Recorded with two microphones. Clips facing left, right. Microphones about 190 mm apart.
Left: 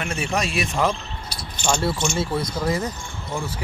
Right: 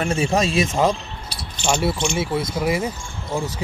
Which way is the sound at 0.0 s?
25° right (ahead or behind).